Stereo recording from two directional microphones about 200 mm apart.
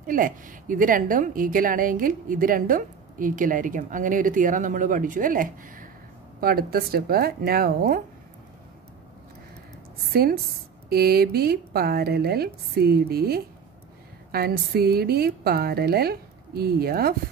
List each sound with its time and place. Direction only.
0.0 s a woman's voice: 45° right (ahead or behind)
10.1 s a woman's voice: 50° right (ahead or behind)